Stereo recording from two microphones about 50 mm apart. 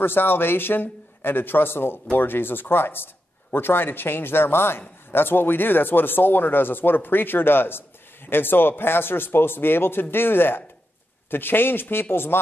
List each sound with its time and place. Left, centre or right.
0.0 s a man's voice: left